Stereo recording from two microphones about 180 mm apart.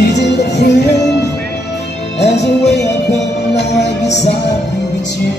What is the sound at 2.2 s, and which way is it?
Music, 70° left (ahead or behind).